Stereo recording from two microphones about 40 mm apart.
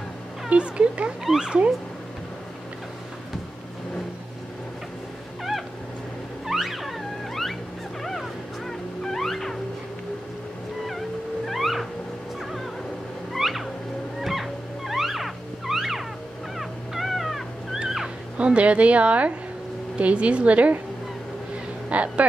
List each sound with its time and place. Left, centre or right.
0.5 s speech: right
1.2 s speech: centre
6.4 s music: centre
8.0 s fowl: centre
10.9 s music: centre
13.4 s music: centre
16.5 s dog: centre
18.4 s a woman's voice: right
21.8 s speech: right